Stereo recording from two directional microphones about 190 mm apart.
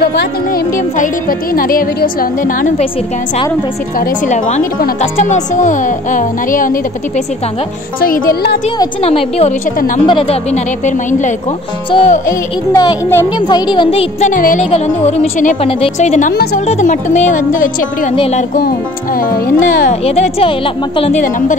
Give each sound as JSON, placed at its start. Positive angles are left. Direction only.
{"t": 0.0, "sound": "speech", "side_deg": 60}
{"t": 0.7, "sound": "a woman's voice", "side_deg": 45}
{"t": 4.0, "sound": "a woman's voice", "side_deg": 40}
{"t": 9.0, "sound": "speech", "side_deg": 30}
{"t": 11.9, "sound": "a woman's voice", "side_deg": 30}
{"t": 12.3, "sound": "music", "side_deg": 20}
{"t": 13.7, "sound": "a woman's voice", "side_deg": 25}
{"t": 14.3, "sound": "a woman's voice", "side_deg": 45}
{"t": 18.1, "sound": "a woman's voice", "side_deg": 30}
{"t": 19.1, "sound": "a woman's voice", "side_deg": 50}
{"t": 19.9, "sound": "speech", "side_deg": 35}